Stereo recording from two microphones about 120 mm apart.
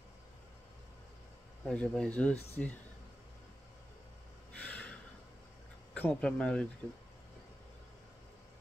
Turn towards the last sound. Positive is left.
turn(degrees=10)  # may be behind; listen again after turning